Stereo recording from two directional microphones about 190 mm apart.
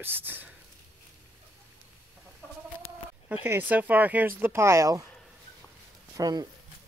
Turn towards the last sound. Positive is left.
turn(degrees=-20)  # may be behind; listen again after turning